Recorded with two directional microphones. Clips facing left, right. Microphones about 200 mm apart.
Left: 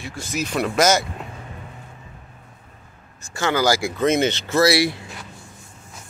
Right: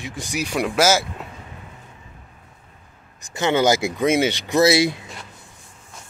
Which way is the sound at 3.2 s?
20° right (ahead or behind).